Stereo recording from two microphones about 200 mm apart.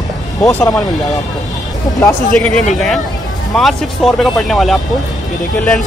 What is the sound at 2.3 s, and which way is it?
Speech, 5° left (ahead or behind).